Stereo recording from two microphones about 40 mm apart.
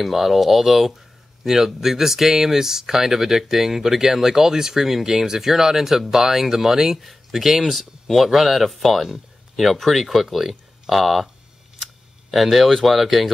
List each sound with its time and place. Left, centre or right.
0.0 s speech: centre
12.3 s speech: centre